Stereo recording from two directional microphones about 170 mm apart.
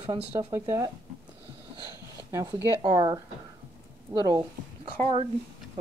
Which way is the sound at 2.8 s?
25° right (ahead or behind).